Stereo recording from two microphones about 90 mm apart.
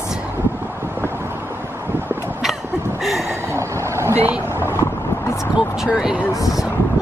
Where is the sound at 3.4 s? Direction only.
35° right (ahead or behind).